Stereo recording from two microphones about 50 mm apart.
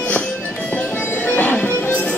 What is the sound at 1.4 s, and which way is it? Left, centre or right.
Music, left.